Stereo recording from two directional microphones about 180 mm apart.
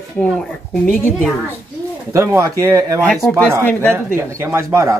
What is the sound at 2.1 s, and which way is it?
Speech, 15° right (ahead or behind).